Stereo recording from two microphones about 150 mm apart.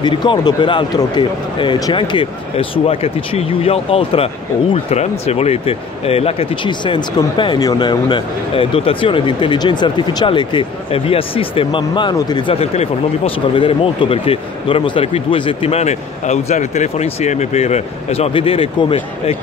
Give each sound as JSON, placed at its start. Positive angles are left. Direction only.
{"t": 0.0, "sound": "speech", "side_deg": 30}